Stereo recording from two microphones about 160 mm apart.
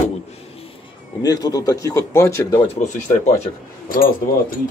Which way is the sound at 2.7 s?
45° left (ahead or behind).